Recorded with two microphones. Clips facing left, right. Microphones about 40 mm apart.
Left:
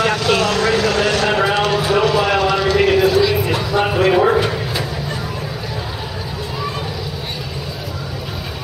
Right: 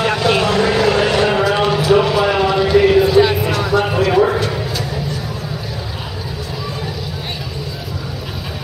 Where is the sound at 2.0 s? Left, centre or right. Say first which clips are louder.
Right 1 dB; centre.